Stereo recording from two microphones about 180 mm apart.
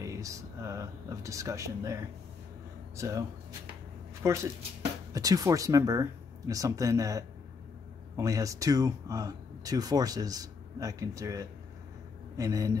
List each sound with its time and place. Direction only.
0.0 s speech: 15° right (ahead or behind)